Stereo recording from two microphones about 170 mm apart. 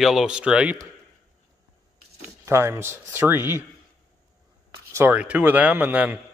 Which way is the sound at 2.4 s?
15° right (ahead or behind).